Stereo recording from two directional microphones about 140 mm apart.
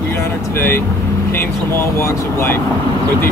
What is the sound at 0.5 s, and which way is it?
Speech, 15° left (ahead or behind).